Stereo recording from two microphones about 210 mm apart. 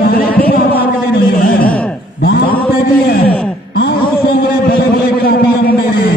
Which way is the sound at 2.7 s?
45° left (ahead or behind).